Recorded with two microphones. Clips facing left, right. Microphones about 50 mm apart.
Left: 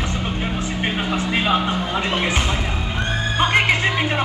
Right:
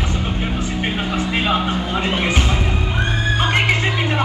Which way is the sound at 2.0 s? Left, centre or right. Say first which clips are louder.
Right 2 dB; centre.